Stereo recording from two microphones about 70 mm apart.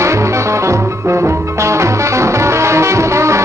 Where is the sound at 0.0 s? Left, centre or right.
Right.